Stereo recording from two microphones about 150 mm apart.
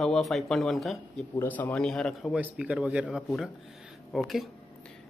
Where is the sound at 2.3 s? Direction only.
10° right (ahead or behind).